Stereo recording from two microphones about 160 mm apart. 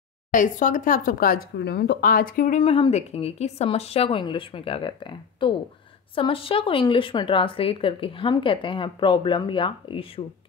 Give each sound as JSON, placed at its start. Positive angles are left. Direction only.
{"t": 0.3, "sound": "speech", "side_deg": 55}
{"t": 2.6, "sound": "speech", "side_deg": 35}